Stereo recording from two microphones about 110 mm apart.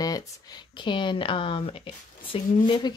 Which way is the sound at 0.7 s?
45° left (ahead or behind).